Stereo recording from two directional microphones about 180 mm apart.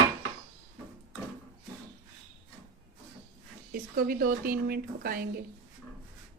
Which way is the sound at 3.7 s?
55° right (ahead or behind).